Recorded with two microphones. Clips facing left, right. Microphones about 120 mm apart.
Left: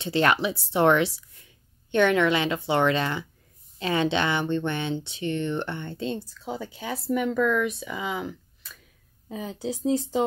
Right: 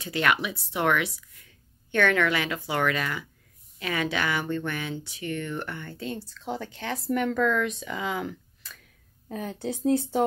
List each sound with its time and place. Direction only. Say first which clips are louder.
0.0 s speech: left 3 dB; 30° left (ahead or behind)
6.2 s speech: even; 10° left (ahead or behind)